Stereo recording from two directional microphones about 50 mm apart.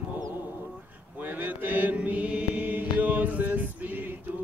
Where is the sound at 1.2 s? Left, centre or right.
Right.